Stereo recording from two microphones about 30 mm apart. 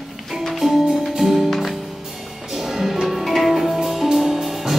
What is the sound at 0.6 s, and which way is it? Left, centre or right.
Music, centre.